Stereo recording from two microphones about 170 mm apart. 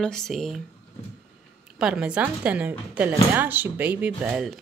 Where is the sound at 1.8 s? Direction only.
5° right (ahead or behind).